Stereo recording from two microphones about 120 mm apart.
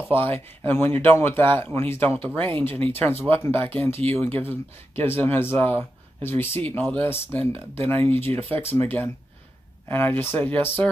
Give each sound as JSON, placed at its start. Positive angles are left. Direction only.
{"t": 0.1, "sound": "speech", "side_deg": 20}